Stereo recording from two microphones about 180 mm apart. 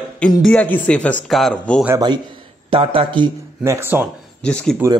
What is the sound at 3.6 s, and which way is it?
Speech, 15° right (ahead or behind).